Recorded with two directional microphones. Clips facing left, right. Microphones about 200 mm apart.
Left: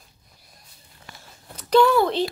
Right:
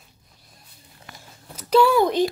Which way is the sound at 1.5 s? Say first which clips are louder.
Even; 5° right (ahead or behind).